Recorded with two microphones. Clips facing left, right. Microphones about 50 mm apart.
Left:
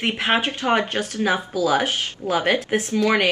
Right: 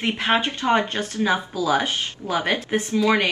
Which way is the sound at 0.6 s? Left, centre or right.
Left.